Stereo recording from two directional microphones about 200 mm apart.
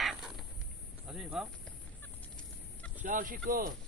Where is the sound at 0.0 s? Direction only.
Centre (ahead or behind).